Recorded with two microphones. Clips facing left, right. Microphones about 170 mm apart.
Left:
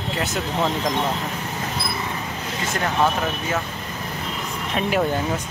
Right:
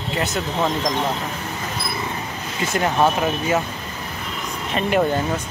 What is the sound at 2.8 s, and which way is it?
Speech, 20° right (ahead or behind).